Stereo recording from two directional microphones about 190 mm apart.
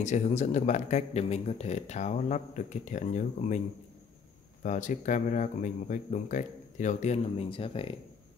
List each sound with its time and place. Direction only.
0.0 s a man's voice: 40° left (ahead or behind)
4.6 s a man's voice: 40° left (ahead or behind)